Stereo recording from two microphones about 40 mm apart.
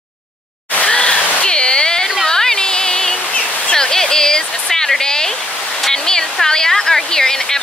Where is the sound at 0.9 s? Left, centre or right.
Left.